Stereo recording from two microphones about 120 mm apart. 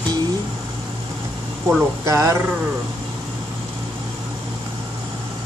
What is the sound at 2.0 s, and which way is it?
Speech, 25° right (ahead or behind).